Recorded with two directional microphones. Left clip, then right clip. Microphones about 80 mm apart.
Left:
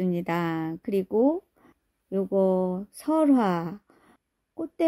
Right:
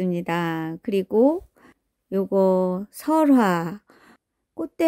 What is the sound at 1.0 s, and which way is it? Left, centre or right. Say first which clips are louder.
Speech: right 5 dB; right.